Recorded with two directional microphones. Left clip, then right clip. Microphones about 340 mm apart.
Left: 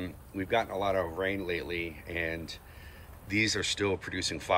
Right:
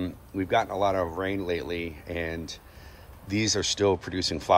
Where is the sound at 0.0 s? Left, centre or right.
Centre.